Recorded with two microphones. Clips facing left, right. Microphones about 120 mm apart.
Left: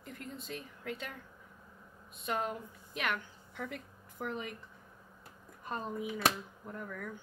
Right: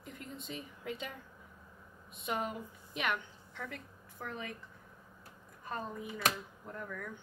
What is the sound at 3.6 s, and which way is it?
Speech, 15° left (ahead or behind).